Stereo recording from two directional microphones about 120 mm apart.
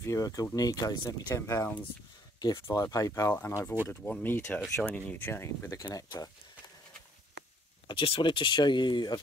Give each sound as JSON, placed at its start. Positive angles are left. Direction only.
{"t": 0.0, "sound": "speech", "side_deg": 30}
{"t": 3.8, "sound": "speech", "side_deg": 15}
{"t": 7.9, "sound": "speech", "side_deg": 50}